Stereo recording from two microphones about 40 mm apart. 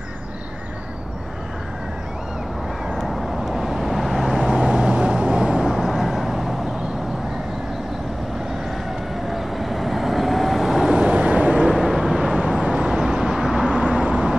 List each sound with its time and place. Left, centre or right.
3.0 s vehicle: centre
4.5 s vehicle: right
5.6 s vehicle: centre
9.3 s vehicle: centre
11.1 s vehicle: right
11.7 s vehicle: centre
12.4 s vehicle: centre
13.4 s vehicle: centre
13.7 s vehicle: right